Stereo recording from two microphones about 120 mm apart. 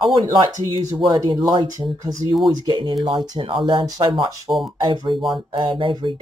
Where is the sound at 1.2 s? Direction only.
40° right (ahead or behind).